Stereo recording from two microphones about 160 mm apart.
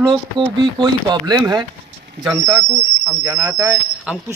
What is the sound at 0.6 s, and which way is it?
Speech, 25° right (ahead or behind).